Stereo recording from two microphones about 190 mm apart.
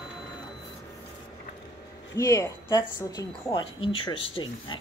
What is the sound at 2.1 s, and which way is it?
Speech, 15° left (ahead or behind).